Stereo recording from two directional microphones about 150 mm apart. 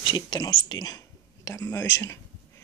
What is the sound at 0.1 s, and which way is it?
Speech, 30° left (ahead or behind).